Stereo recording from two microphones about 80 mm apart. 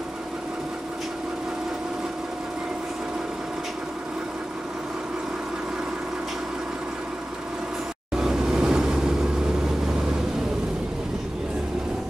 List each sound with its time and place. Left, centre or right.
8.2 s vehicle: centre